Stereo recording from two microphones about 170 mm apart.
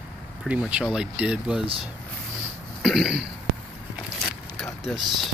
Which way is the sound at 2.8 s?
Centre (ahead or behind).